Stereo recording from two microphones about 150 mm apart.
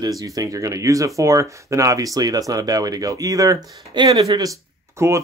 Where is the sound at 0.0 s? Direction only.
25° right (ahead or behind).